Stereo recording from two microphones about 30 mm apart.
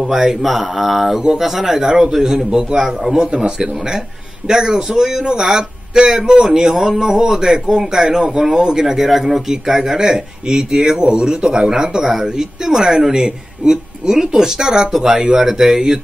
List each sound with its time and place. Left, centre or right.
0.0 s a man's voice: centre
0.4 s mantra: centre
1.4 s a man's voice: centre
3.3 s a man's voice: right
9.0 s a man's voice: centre